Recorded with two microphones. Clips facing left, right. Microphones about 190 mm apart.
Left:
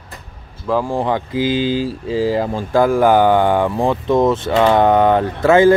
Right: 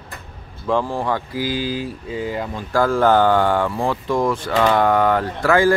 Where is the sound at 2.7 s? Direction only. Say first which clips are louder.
Left 3 dB; 15° left (ahead or behind).